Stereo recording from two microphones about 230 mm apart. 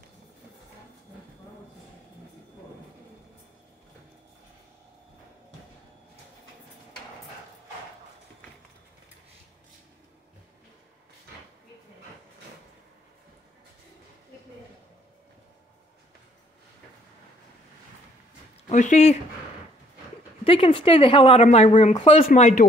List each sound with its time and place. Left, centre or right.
18.7 s speech: left
20.4 s a woman's voice: left